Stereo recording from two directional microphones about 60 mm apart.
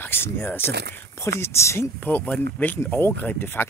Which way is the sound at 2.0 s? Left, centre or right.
Left.